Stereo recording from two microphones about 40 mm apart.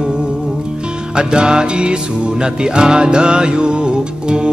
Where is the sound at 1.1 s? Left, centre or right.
Right.